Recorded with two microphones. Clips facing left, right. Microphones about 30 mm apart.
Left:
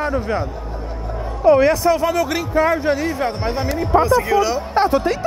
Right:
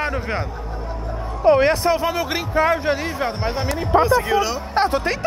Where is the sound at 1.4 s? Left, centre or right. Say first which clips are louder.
Left 2 dB; right.